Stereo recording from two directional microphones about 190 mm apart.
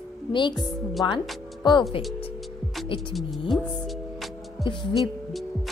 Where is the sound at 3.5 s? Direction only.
Centre (ahead or behind).